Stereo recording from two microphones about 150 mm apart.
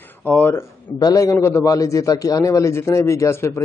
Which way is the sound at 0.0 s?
15° left (ahead or behind).